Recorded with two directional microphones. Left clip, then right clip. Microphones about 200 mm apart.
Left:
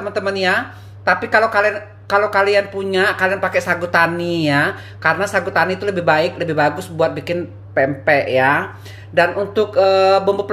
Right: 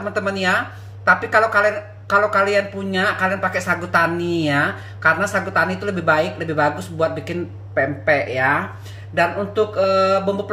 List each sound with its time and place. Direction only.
0.1 s speech: 15° left (ahead or behind); by 10.3 s 30° left (ahead or behind)